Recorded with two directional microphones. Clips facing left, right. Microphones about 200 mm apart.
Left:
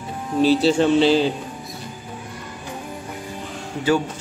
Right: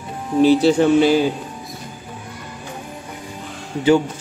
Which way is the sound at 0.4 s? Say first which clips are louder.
Right 3 dB; 15° right (ahead or behind).